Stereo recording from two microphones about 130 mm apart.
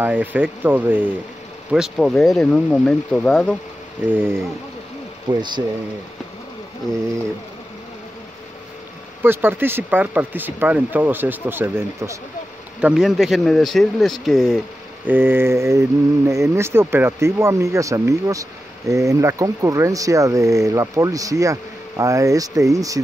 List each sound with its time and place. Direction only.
0.0 s speech: 15° right (ahead or behind)
1.7 s speech: 5° right (ahead or behind)
4.0 s speech: 15° right (ahead or behind)
5.3 s speech: 35° right (ahead or behind)
9.2 s speech: 15° right (ahead or behind)
12.8 s speech: 5° right (ahead or behind)
15.0 s speech: 15° right (ahead or behind)